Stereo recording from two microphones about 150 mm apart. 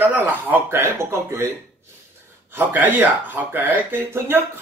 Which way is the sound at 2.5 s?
10° right (ahead or behind).